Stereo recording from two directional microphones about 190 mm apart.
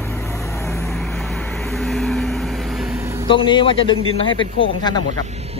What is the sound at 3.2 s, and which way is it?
A man's voice, 25° left (ahead or behind).